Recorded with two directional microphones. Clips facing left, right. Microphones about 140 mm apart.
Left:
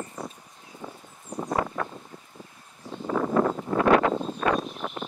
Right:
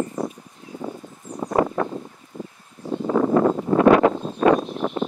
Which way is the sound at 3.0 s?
45° right (ahead or behind).